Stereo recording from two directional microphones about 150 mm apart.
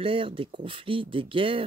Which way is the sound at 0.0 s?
35° right (ahead or behind).